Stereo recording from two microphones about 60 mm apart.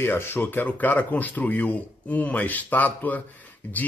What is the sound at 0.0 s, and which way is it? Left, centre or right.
Speech, left.